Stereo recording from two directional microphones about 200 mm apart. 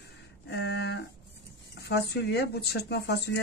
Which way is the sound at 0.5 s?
60° left (ahead or behind).